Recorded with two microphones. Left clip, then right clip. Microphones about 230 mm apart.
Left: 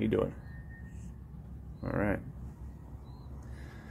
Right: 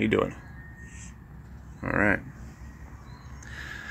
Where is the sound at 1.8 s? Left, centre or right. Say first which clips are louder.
Right 9 dB; centre.